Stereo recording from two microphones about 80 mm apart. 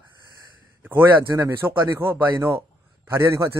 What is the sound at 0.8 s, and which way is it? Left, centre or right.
A man's voice, right.